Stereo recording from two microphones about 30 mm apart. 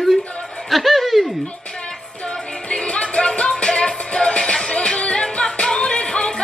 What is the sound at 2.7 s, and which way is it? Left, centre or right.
Music, left.